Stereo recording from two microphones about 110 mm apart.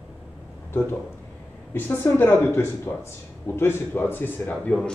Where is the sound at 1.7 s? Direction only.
20° left (ahead or behind).